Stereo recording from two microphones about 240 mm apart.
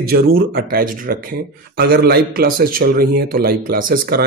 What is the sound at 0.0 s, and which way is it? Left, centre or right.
A man's voice, right.